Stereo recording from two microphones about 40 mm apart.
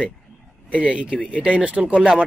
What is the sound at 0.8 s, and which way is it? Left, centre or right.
Speech, right.